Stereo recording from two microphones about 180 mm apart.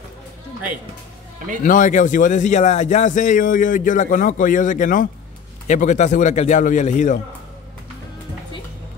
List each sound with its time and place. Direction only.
1.6 s a man's voice: 45° left (ahead or behind)